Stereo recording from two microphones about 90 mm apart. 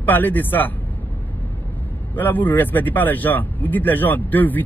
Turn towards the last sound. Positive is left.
turn(degrees=20)  # may be behind; listen again after turning